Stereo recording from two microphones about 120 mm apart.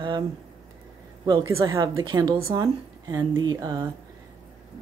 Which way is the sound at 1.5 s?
25° right (ahead or behind).